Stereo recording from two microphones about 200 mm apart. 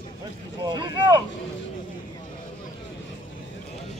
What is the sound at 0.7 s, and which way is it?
Speech, 20° right (ahead or behind).